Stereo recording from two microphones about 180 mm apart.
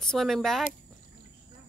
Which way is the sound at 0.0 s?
5° left (ahead or behind).